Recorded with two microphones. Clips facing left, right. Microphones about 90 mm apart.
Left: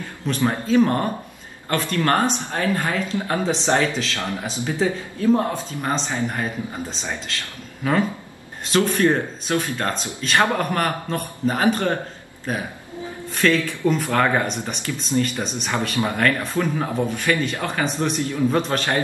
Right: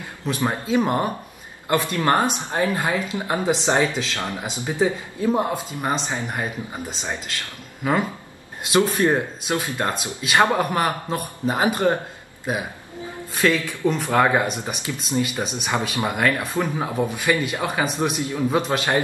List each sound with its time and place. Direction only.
0.3 s speech: 15° right (ahead or behind)
13.3 s speech: 10° right (ahead or behind)
14.1 s speech: 10° right (ahead or behind)